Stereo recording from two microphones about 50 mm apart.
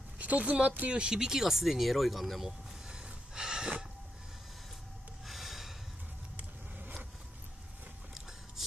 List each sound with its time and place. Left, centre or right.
0.2 s speech: right
1.0 s speech: centre
2.9 s snort: centre
5.2 s gasp: centre